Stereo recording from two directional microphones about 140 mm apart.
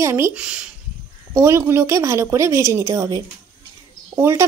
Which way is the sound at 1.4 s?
20° right (ahead or behind).